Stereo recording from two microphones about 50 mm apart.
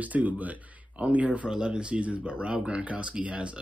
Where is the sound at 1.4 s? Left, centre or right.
Centre.